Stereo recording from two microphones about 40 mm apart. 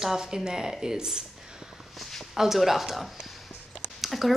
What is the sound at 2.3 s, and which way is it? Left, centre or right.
Speech, centre.